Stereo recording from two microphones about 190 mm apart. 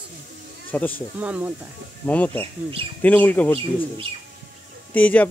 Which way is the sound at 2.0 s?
10° left (ahead or behind).